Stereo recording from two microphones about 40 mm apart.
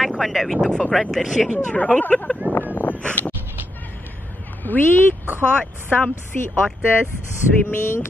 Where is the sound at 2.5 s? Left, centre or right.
Left.